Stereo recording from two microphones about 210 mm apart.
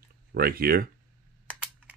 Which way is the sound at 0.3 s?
45° right (ahead or behind).